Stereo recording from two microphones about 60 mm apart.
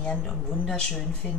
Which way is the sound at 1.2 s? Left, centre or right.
Centre.